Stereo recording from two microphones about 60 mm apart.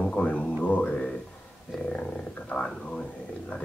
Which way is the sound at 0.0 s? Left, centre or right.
Left.